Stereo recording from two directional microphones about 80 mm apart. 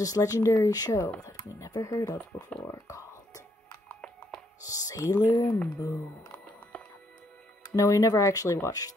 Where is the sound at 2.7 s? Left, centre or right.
Left.